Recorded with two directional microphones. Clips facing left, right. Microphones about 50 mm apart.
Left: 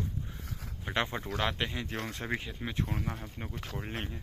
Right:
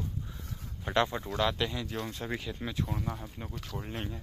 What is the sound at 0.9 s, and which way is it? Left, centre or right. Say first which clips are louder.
Speech: right 4 dB; left.